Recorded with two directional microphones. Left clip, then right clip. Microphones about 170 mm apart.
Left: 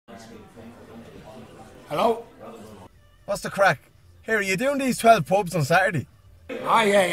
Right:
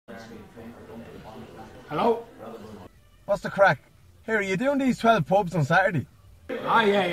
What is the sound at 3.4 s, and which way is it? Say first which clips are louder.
Speech: even; 30° left (ahead or behind).